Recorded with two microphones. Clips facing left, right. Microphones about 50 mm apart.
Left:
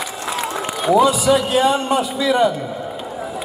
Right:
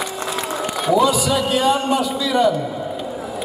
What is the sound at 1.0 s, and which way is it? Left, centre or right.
A man's voice, centre.